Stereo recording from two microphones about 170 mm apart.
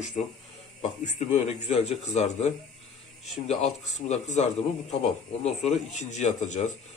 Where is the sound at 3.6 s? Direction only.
40° left (ahead or behind).